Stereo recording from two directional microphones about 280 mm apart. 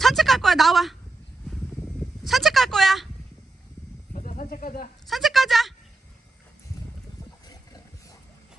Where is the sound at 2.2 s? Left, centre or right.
Centre.